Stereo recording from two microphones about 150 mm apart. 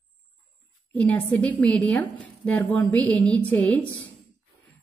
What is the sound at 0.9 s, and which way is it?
A woman's voice, 10° left (ahead or behind).